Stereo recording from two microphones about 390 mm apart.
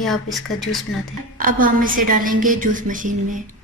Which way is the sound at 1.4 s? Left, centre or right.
Right.